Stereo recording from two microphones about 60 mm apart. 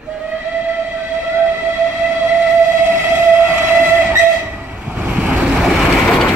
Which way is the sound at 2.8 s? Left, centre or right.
Right.